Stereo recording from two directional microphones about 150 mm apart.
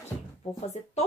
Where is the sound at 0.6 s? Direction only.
50° left (ahead or behind).